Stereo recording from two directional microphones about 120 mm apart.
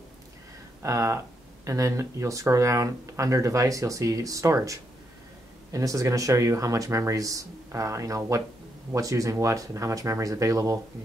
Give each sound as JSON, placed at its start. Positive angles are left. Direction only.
{"t": 0.8, "sound": "speech", "side_deg": -25}